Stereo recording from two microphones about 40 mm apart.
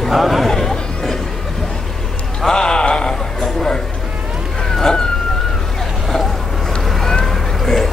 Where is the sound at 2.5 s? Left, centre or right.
Centre.